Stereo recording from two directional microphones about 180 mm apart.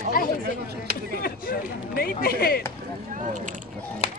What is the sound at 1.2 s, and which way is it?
Speech, 55° left (ahead or behind).